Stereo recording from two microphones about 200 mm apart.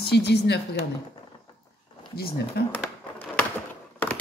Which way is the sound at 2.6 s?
55° left (ahead or behind).